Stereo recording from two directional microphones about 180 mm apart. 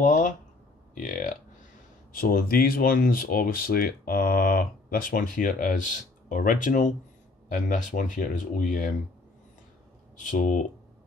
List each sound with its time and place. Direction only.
0.0 s a sound: 45° left (ahead or behind)
0.9 s speech: 45° left (ahead or behind)
10.3 s speech: 45° left (ahead or behind)